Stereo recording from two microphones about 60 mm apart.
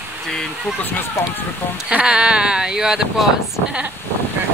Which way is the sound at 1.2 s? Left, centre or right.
Left.